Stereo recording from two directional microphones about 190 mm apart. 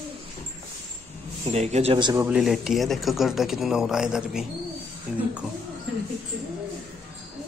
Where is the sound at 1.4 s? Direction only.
35° right (ahead or behind).